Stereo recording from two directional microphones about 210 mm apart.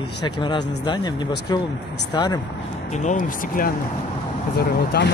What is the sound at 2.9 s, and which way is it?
Speech, 35° left (ahead or behind).